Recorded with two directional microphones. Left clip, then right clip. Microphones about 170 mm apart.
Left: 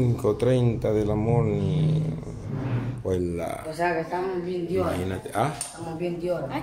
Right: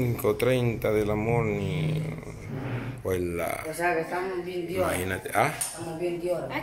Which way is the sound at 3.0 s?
10° left (ahead or behind).